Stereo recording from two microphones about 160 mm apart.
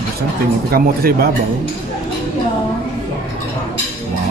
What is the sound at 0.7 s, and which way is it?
Speech, 70° right (ahead or behind).